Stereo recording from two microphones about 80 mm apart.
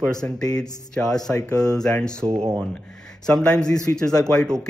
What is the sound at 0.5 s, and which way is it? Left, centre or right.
Speech, centre.